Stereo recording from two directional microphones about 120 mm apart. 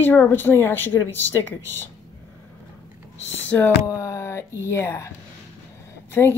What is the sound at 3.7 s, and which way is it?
Speech, 25° left (ahead or behind).